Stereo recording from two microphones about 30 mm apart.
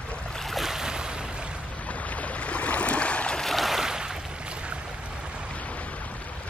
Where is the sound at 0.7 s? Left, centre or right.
Right.